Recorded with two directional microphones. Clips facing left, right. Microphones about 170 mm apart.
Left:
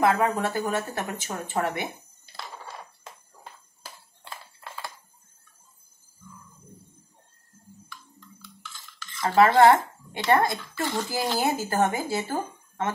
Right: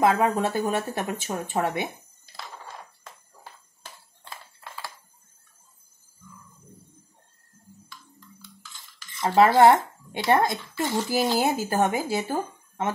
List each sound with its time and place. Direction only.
0.0 s speech: 25° right (ahead or behind)
9.2 s speech: 20° right (ahead or behind)